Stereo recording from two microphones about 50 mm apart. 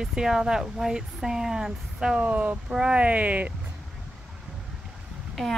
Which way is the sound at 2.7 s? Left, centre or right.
Centre.